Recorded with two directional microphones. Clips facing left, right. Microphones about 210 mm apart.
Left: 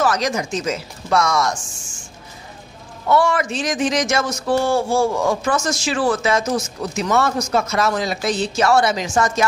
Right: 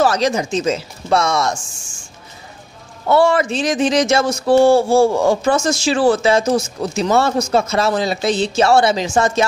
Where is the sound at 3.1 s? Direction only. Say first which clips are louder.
Right 4 dB; 30° right (ahead or behind).